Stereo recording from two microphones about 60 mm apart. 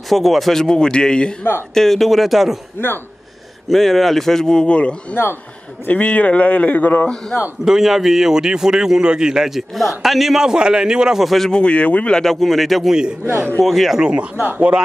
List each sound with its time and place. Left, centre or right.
0.1 s a man's voice: centre
3.6 s a man's voice: centre
7.6 s a man's voice: centre
11.2 s a man's voice: centre
11.5 s a man's voice: left
12.2 s a man's voice: centre
13.9 s a man's voice: centre